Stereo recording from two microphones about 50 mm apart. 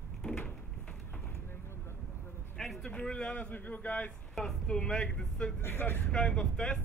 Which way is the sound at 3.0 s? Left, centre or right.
Left.